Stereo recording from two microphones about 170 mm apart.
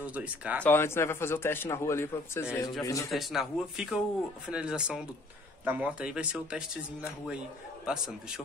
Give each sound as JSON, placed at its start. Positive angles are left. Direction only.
{"t": 0.0, "sound": "speech", "side_deg": -10}
{"t": 0.7, "sound": "a man's voice", "side_deg": 15}
{"t": 3.1, "sound": "speech", "side_deg": 0}